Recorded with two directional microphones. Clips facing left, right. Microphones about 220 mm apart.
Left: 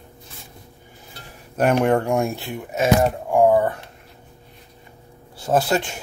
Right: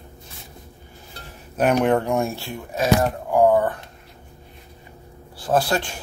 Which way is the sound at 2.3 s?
20° left (ahead or behind).